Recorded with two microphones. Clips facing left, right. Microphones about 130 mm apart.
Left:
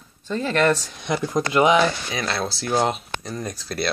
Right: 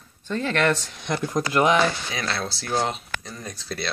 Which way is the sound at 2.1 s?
25° left (ahead or behind).